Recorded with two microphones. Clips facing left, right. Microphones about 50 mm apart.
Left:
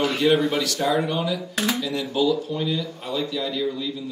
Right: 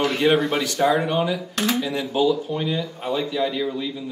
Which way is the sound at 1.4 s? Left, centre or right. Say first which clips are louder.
Right 1 dB; centre.